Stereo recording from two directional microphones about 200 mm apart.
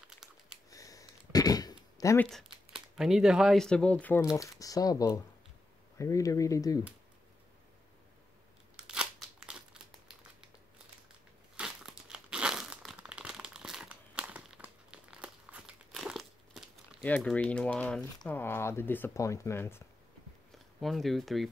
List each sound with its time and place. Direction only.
0.7 s a sound: 15° left (ahead or behind)
2.2 s speech: centre (ahead or behind); by 6.8 s 15° left (ahead or behind)
8.8 s a sound: 5° right (ahead or behind)
11.5 s crumpling: 5° right (ahead or behind)
17.0 s speech: 5° left (ahead or behind)
20.5 s speech: centre (ahead or behind)